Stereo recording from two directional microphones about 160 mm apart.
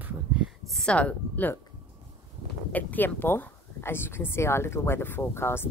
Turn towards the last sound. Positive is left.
turn(degrees=15)  # may be behind; listen again after turning